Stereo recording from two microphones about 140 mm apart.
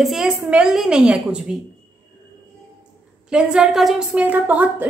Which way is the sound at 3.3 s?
5° right (ahead or behind).